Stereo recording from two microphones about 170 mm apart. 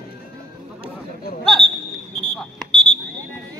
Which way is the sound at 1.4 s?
Centre (ahead or behind).